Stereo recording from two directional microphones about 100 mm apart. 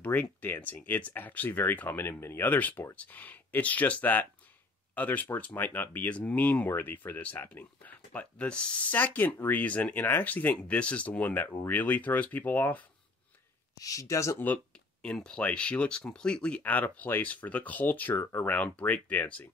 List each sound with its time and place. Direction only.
0.0 s speech: 15° left (ahead or behind)
13.7 s speech: 35° left (ahead or behind)
14.4 s speech: 10° left (ahead or behind)